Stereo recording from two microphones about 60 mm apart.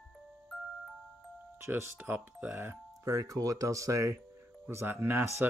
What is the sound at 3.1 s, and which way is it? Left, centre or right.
Speech, right.